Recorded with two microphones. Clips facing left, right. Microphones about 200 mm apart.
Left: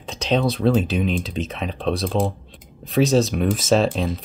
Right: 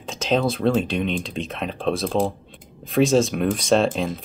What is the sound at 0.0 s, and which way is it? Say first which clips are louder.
Speech: even; centre (ahead or behind).